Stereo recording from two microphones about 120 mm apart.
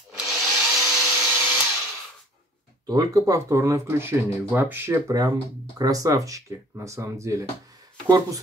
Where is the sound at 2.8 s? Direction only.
30° right (ahead or behind).